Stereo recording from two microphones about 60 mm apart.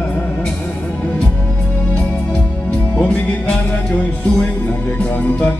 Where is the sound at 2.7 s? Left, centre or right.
Left.